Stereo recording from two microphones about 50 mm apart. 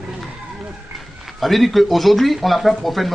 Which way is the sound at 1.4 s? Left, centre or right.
Centre.